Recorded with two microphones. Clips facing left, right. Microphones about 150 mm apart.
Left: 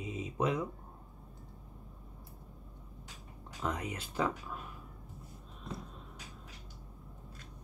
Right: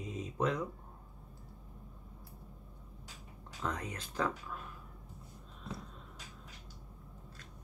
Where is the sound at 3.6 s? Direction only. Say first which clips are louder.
Left 2 dB; 10° left (ahead or behind).